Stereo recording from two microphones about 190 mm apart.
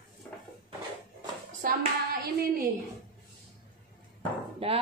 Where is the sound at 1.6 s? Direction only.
50° right (ahead or behind).